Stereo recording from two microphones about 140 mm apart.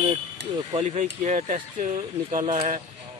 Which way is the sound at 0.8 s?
60° right (ahead or behind).